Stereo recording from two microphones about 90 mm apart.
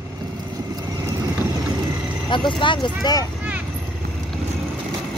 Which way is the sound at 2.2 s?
65° left (ahead or behind).